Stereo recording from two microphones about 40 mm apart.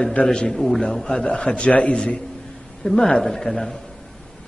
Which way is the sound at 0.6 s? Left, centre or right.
Centre.